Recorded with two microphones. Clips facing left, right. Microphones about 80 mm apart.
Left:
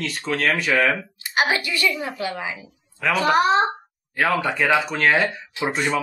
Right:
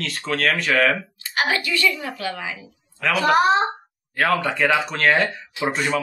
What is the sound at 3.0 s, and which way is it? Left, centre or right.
Speech, centre.